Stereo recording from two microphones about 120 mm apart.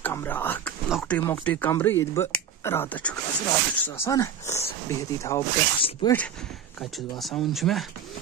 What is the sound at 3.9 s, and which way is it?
Speech, 25° left (ahead or behind).